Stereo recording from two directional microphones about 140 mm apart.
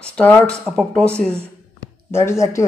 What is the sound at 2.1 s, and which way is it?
Speech, 20° left (ahead or behind).